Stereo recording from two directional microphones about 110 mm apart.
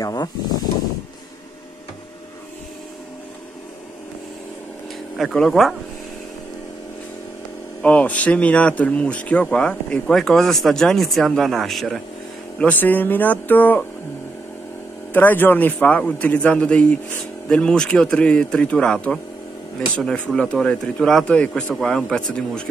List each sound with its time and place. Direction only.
0.0 s snake: 35° left (ahead or behind)
5.1 s speech: centre (ahead or behind)
7.8 s speech: 15° left (ahead or behind)
12.5 s speech: 15° left (ahead or behind)
15.1 s speech: 20° left (ahead or behind)